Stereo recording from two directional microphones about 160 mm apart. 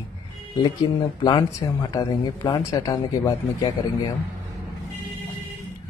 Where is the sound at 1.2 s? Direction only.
25° left (ahead or behind).